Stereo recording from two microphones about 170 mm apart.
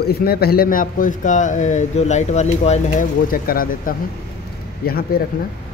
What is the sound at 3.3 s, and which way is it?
A man's voice, 60° left (ahead or behind).